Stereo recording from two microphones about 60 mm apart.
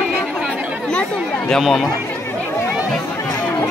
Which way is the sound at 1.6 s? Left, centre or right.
Centre.